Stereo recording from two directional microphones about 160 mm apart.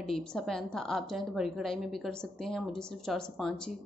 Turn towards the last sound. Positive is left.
turn(degrees=5)  # may be behind; listen again after turning